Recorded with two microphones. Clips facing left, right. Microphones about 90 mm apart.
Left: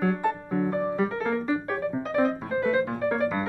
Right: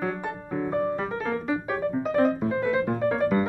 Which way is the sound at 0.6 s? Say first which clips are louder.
Even; 10° left (ahead or behind).